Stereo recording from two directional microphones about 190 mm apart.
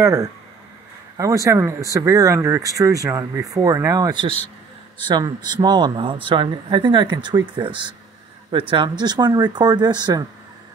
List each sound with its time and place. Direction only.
0.0 s speech: 15° right (ahead or behind)